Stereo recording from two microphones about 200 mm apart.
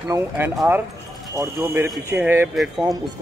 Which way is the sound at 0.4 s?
10° right (ahead or behind).